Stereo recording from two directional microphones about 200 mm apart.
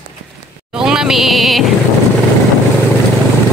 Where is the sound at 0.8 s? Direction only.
5° right (ahead or behind).